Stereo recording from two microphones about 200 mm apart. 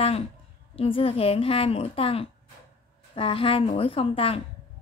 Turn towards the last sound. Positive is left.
turn(degrees=30)  # may be behind; listen again after turning